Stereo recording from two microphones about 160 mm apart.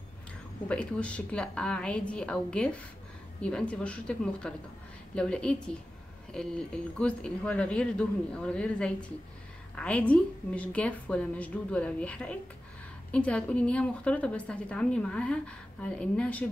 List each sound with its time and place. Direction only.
0.7 s a woman's voice: 5° left (ahead or behind)